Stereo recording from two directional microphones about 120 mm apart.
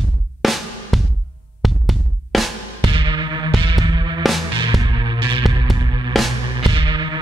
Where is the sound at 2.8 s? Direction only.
40° right (ahead or behind).